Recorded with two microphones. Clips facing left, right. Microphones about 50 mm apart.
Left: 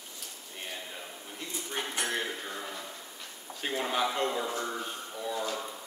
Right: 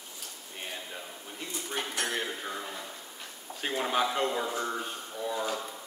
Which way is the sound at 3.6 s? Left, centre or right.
Centre.